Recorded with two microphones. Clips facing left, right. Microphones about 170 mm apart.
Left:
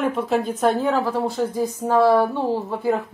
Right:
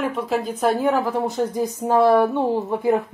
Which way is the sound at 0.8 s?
15° right (ahead or behind).